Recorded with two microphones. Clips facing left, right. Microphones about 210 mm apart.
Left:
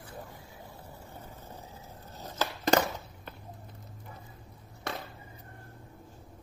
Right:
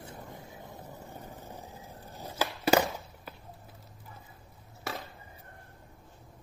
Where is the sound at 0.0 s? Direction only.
20° right (ahead or behind).